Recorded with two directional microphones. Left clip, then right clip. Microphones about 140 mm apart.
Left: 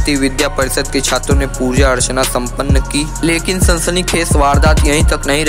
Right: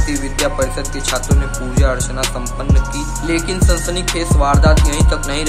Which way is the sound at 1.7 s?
45° left (ahead or behind).